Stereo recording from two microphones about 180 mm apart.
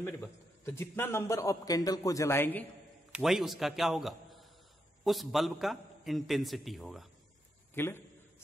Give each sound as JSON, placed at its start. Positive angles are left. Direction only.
{"t": 0.0, "sound": "a man's voice", "side_deg": 15}
{"t": 3.1, "sound": "a man's voice", "side_deg": 0}
{"t": 7.7, "sound": "a man's voice", "side_deg": 15}